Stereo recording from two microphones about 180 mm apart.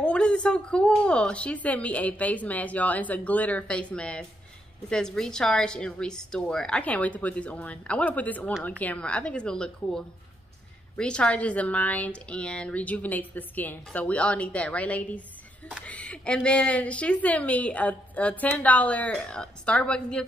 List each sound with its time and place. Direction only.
0.0 s a woman's voice: 5° left (ahead or behind)